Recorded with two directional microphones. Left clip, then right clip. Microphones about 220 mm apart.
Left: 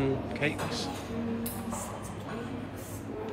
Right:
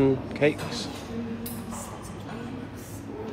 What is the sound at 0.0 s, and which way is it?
Speech, 10° left (ahead or behind).